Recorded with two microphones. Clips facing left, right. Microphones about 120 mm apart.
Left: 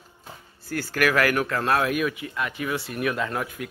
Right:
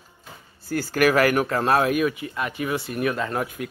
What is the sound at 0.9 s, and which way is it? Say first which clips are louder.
Speech: right 3 dB; 35° right (ahead or behind).